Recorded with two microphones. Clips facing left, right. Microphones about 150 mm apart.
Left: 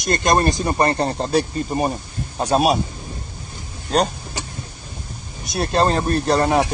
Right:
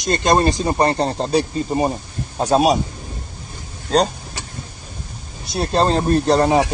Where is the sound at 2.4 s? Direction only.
40° right (ahead or behind).